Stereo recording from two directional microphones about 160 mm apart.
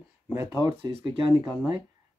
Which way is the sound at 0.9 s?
30° right (ahead or behind).